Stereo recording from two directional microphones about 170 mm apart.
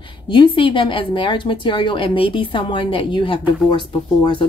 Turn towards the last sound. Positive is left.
turn(degrees=30)  # may be behind; listen again after turning